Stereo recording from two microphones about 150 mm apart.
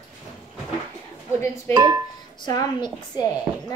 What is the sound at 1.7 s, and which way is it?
Speech, 30° right (ahead or behind).